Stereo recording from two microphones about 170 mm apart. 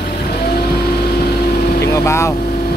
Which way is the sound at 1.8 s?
20° left (ahead or behind).